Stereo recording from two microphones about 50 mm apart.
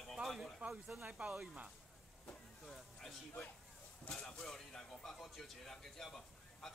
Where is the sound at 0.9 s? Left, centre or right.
Right.